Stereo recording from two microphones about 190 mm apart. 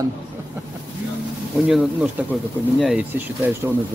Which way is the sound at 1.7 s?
5° right (ahead or behind).